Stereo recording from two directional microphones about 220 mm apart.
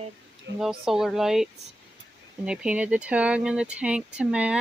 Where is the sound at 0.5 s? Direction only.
5° right (ahead or behind).